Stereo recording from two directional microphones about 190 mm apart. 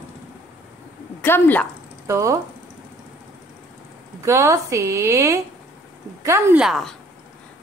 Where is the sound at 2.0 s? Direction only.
15° right (ahead or behind).